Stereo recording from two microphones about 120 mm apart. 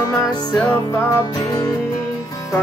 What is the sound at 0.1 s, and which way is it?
Music, 35° left (ahead or behind).